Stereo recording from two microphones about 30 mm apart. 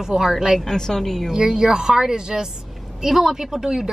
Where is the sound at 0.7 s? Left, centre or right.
Centre.